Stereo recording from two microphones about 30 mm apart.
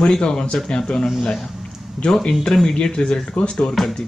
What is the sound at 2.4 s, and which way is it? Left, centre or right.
Speech, centre.